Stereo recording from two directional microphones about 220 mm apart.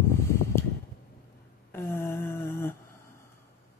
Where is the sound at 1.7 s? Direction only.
10° left (ahead or behind).